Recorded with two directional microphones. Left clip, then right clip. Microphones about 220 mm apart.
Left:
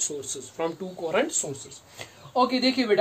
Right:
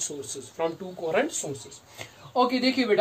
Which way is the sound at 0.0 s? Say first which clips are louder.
Left 2 dB; 25° left (ahead or behind).